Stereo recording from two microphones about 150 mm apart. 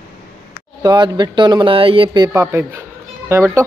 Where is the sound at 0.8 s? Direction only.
30° right (ahead or behind).